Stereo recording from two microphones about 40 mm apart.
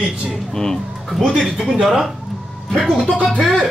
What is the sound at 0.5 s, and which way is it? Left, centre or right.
Speech, centre.